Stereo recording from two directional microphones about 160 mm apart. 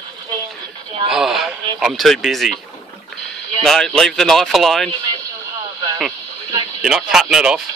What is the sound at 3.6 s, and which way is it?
Speech, centre (ahead or behind).